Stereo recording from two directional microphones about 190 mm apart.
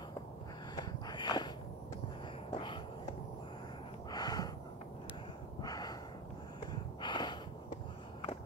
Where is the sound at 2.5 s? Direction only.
25° left (ahead or behind).